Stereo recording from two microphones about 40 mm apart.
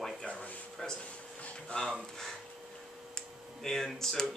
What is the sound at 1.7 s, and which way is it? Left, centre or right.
Speech, left.